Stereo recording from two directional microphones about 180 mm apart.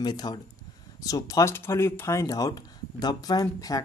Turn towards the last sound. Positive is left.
turn(degrees=20)  # may be behind; listen again after turning